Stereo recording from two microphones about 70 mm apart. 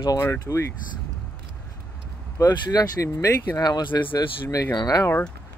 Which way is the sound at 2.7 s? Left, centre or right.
Left.